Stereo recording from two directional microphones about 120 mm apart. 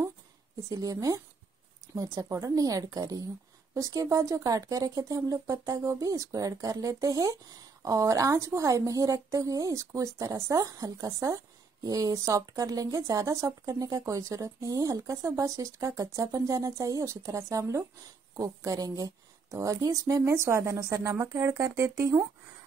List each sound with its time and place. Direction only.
0.7 s a woman's voice: 25° right (ahead or behind)